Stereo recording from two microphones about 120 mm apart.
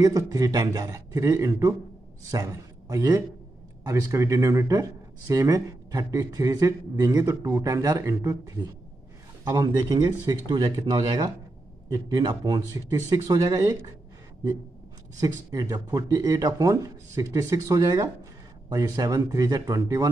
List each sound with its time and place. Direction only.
0.0 s a man's voice: 30° right (ahead or behind)
9.4 s speech: 30° right (ahead or behind)
15.1 s a man's voice: 30° right (ahead or behind)